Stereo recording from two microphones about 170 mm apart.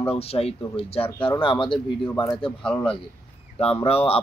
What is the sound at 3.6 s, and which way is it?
Speech, 35° left (ahead or behind).